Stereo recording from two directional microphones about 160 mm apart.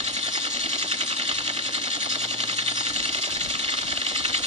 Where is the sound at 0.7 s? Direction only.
45° right (ahead or behind).